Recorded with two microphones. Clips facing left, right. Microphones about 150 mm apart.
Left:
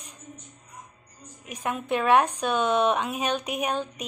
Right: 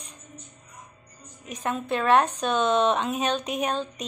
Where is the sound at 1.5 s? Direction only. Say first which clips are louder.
Even; 10° left (ahead or behind).